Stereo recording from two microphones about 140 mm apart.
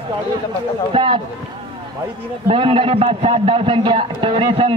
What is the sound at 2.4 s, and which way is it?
A man's voice, 40° right (ahead or behind).